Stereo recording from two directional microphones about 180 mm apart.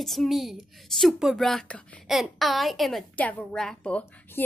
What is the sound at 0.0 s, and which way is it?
A woman's voice, centre (ahead or behind).